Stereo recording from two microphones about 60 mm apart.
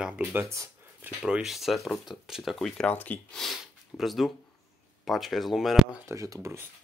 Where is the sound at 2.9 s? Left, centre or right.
Left.